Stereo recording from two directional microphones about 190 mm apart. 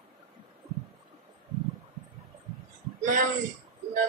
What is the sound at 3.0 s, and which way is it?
Speech, 45° right (ahead or behind).